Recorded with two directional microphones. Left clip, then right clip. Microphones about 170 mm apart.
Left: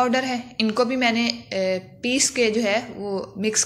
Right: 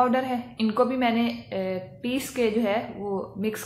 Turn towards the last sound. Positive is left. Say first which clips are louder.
# left 3 dB
turn(degrees=15)  # may be behind; listen again after turning